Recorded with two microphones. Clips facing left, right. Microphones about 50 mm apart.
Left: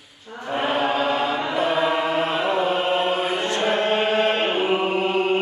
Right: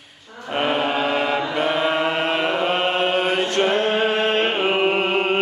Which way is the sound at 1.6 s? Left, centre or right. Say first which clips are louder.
Left 1 dB; right.